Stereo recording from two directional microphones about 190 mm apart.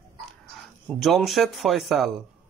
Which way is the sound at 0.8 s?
Centre (ahead or behind).